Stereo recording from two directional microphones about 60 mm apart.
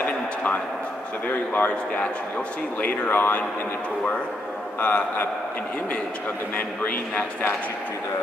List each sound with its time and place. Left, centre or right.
0.0 s a sound: left
1.2 s a man's voice: left
2.8 s speech: left
4.7 s speech: left
6.5 s a man's voice: left